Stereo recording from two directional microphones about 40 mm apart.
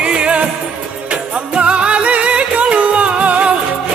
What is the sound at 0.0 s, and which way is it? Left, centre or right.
Music, right.